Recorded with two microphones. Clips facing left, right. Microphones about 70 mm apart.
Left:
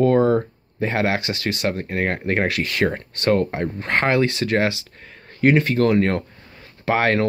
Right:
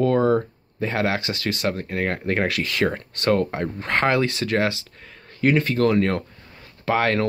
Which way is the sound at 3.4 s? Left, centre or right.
Centre.